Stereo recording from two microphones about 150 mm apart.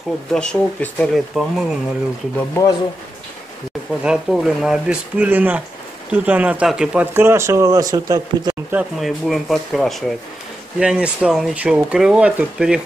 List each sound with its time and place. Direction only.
0.3 s speech: 5° left (ahead or behind)
2.3 s speech: 15° left (ahead or behind)
4.0 s speech: 5° right (ahead or behind); by 8.5 s 25° right (ahead or behind)
8.7 s speech: centre (ahead or behind)